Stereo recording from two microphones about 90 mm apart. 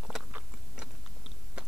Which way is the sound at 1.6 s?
10° right (ahead or behind).